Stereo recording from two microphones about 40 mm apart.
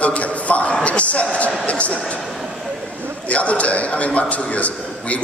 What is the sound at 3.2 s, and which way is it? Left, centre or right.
A man's voice, left.